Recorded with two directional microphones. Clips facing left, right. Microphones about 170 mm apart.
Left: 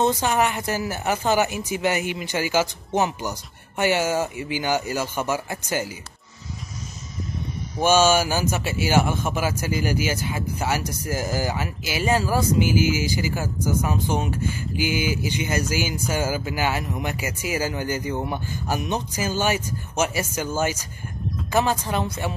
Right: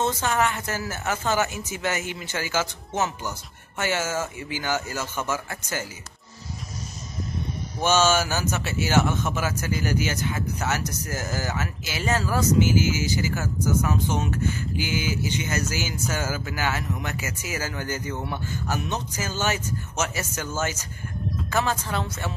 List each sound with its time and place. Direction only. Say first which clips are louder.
0.0 s speech: left 3 dB; 15° left (ahead or behind)
7.8 s speech: left 3 dB; 10° left (ahead or behind)